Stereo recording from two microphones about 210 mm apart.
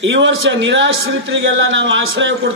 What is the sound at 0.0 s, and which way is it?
A man's voice, 65° right (ahead or behind).